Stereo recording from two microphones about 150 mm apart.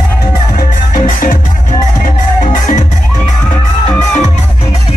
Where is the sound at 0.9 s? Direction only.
60° left (ahead or behind).